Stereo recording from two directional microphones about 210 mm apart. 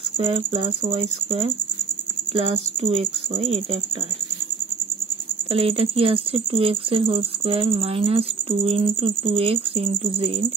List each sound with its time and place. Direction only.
0.2 s speech: 30° right (ahead or behind)
5.5 s speech: 30° right (ahead or behind)